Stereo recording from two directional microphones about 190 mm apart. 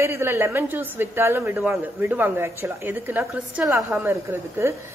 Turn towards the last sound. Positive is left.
turn(degrees=-15)  # may be behind; listen again after turning